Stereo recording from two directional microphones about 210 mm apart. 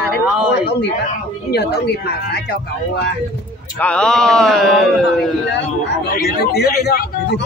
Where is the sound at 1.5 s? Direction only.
50° left (ahead or behind).